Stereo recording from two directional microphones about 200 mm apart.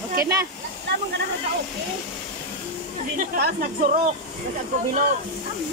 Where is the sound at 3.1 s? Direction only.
45° right (ahead or behind).